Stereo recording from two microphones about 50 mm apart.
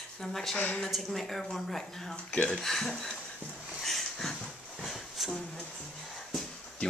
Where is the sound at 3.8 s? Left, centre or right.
Centre.